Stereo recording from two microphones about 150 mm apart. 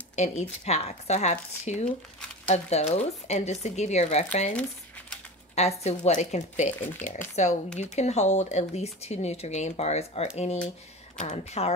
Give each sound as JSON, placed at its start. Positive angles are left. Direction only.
{"t": 0.1, "sound": "speech", "side_deg": 50}